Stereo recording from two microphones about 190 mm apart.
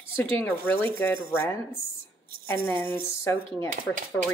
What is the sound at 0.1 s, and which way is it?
Speech, 10° left (ahead or behind).